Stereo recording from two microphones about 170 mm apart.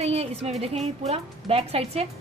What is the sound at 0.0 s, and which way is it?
A woman's voice, 35° right (ahead or behind).